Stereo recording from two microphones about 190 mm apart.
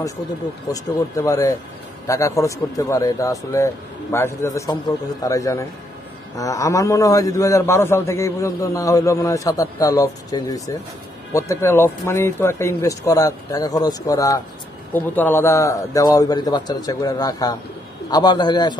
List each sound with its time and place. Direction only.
0.7 s a man's voice: 20° left (ahead or behind)